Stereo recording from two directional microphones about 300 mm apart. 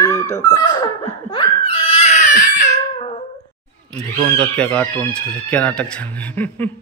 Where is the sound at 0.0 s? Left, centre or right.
Centre.